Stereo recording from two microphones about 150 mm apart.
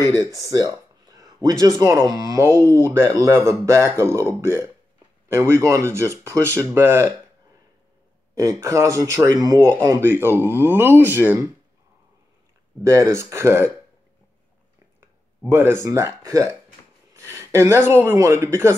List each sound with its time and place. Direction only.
0.4 s speech: 25° right (ahead or behind)
8.4 s speech: 20° right (ahead or behind)
12.8 s speech: 20° right (ahead or behind)
15.4 s speech: 15° right (ahead or behind)